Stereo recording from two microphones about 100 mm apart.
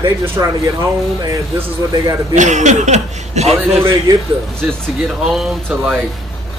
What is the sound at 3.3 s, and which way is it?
Speech, 90° right.